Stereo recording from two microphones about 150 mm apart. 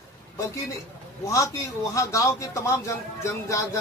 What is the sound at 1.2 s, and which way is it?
Speech, 20° left (ahead or behind).